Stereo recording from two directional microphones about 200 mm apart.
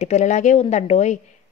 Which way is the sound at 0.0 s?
35° left (ahead or behind).